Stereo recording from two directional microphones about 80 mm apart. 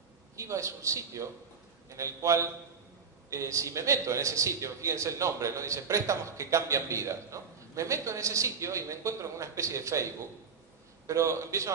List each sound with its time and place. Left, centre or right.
0.4 s a man's voice: right
11.1 s a man's voice: right